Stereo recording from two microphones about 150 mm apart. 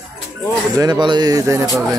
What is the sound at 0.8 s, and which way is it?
Speech, 30° right (ahead or behind).